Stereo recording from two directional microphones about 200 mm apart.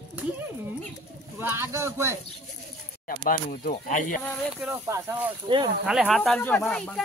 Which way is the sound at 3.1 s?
45° left (ahead or behind).